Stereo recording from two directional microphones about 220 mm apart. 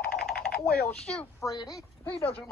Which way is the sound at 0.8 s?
5° left (ahead or behind).